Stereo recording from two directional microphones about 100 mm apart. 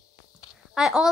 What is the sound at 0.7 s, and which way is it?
Speech, 5° right (ahead or behind).